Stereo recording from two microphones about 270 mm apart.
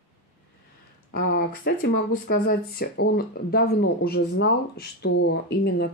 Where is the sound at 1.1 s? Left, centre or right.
Left.